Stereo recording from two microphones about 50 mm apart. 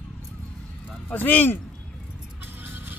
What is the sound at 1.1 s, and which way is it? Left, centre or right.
Speech, left.